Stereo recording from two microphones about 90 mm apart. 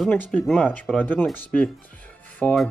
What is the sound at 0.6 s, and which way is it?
Speech, 15° left (ahead or behind).